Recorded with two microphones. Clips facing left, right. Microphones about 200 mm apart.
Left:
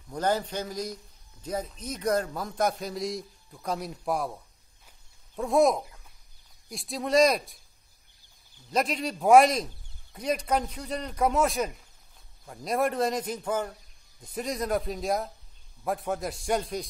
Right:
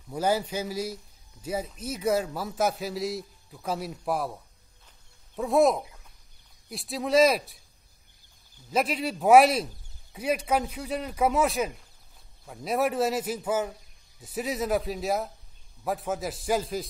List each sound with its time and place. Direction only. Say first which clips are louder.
0.1 s a man's voice: right 1 dB; 10° right (ahead or behind)
5.4 s a man's voice: right 1 dB; centre (ahead or behind)
8.6 s a man's voice: right 1 dB; 5° right (ahead or behind)